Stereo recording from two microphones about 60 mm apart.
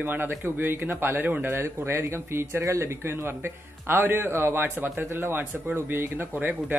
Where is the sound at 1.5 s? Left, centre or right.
Right.